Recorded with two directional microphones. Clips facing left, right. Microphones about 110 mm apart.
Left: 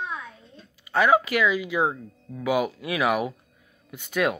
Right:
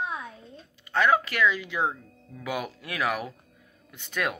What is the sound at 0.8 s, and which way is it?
Speech, 10° left (ahead or behind).